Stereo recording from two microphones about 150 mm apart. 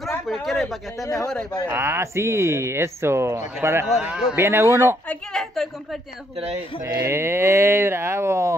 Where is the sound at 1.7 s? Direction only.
15° right (ahead or behind).